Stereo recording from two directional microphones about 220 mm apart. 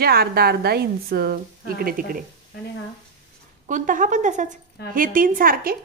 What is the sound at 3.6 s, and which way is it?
A woman's voice, 35° right (ahead or behind).